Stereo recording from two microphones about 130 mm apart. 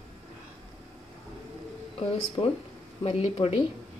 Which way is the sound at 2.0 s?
50° left (ahead or behind).